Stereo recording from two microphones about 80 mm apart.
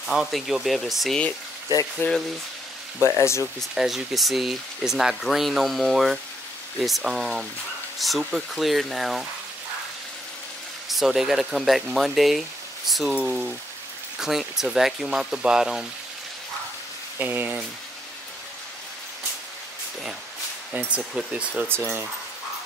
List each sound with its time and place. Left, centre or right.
0.0 s speech: centre
2.0 s speech: left
3.2 s speech: left
3.7 s speech: centre
10.9 s speech: centre
13.1 s speech: centre
17.2 s speech: right
21.3 s speech: centre
21.6 s speech: right